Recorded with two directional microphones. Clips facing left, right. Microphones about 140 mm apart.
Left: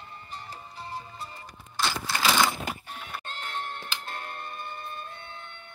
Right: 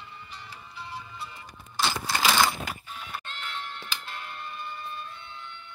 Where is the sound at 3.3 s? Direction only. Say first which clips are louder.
Left 2 dB; 45° left (ahead or behind).